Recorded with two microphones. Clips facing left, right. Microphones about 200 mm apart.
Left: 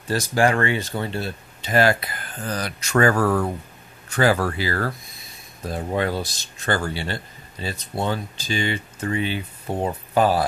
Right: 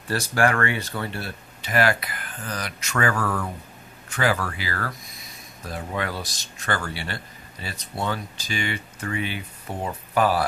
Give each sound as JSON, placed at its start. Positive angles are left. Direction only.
{"t": 0.1, "sound": "speech", "side_deg": 20}